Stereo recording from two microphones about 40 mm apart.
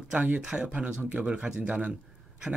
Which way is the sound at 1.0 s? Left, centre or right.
Right.